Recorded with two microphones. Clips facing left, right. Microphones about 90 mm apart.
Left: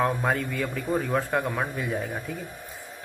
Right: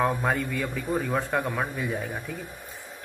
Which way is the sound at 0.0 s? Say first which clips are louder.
Even; centre (ahead or behind).